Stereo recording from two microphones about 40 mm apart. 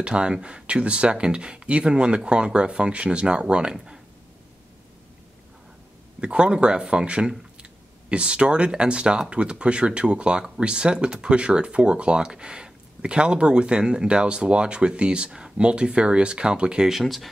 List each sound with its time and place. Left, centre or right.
0.0 s speech: right
3.7 s speech: centre
6.2 s speech: right
17.0 s speech: centre